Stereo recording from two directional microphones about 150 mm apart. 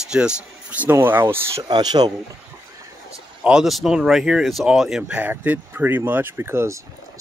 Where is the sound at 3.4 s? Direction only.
5° right (ahead or behind).